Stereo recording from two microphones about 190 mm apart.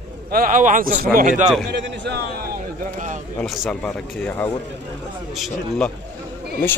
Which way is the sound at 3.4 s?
Centre (ahead or behind).